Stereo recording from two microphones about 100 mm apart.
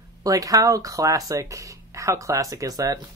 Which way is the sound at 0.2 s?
35° right (ahead or behind).